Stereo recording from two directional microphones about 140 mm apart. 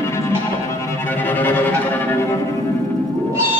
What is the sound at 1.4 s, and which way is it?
Music, 15° left (ahead or behind).